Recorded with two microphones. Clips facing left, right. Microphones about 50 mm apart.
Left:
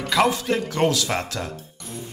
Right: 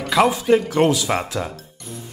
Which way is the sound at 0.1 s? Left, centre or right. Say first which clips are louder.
Right 5 dB; centre.